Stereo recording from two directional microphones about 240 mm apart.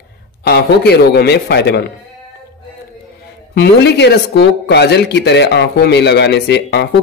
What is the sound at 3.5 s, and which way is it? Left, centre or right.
Speech, left.